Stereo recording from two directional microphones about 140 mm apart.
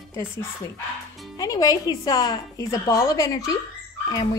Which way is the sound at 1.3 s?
25° left (ahead or behind).